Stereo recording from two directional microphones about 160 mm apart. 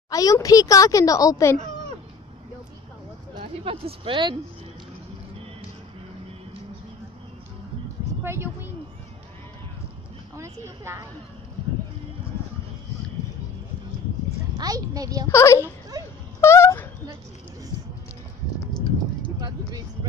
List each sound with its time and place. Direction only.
0.1 s speech: 20° left (ahead or behind)
3.3 s speech: 35° right (ahead or behind)
8.2 s speech: 15° right (ahead or behind)
10.3 s a woman's voice: 15° right (ahead or behind)
14.6 s a woman's voice: 20° right (ahead or behind)
15.3 s speech: 15° left (ahead or behind)
16.3 s a sound: 15° left (ahead or behind)